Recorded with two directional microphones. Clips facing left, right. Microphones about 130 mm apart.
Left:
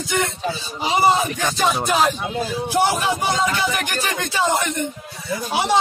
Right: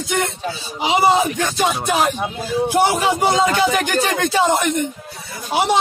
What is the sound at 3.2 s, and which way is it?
Music, 25° right (ahead or behind).